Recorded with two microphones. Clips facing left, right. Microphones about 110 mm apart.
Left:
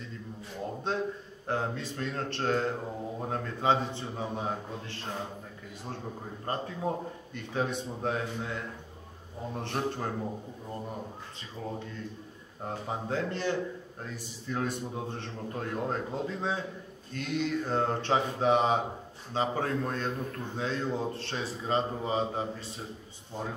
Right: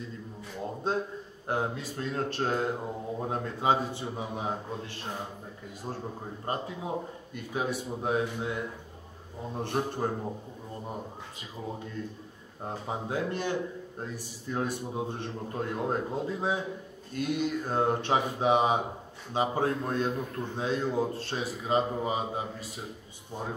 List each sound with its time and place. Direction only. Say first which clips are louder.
1.5 s a man's voice: right 1 dB; 15° right (ahead or behind)
6.4 s a man's voice: left 2 dB; 15° right (ahead or behind)
12.6 s a man's voice: even; 15° right (ahead or behind)
21.1 s speech: right 2 dB; 40° right (ahead or behind)
21.6 s a man's voice: right 2 dB; 10° right (ahead or behind)